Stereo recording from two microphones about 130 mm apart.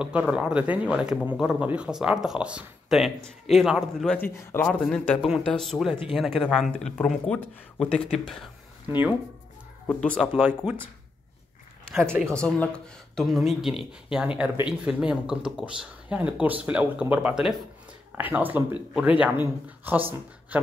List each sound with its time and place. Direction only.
0.0 s speech: 10° right (ahead or behind)
4.2 s a man's voice: 15° left (ahead or behind)
4.6 s a man's voice: 5° left (ahead or behind)
9.8 s a man's voice: 10° left (ahead or behind)
10.3 s speech: 10° right (ahead or behind)
12.2 s speech: 5° left (ahead or behind); by 20.6 s 10° right (ahead or behind)